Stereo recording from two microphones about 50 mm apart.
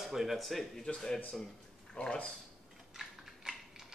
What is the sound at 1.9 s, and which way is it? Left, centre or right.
Speech, centre.